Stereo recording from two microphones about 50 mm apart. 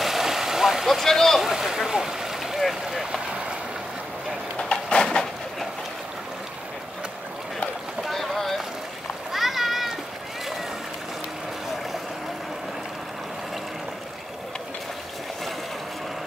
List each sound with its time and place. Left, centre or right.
0.0 s vehicle: centre
1.4 s speech: centre
4.6 s a sound: centre
8.0 s boat: centre
9.3 s splash: centre